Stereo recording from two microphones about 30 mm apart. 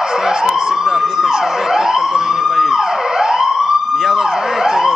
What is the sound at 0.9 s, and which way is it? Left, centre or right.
Emergency vehicle, centre.